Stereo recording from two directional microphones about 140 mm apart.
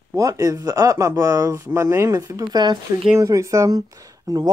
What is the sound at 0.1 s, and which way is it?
Speech, 25° right (ahead or behind).